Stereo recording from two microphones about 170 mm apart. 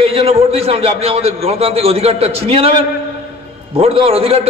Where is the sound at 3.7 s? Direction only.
35° right (ahead or behind).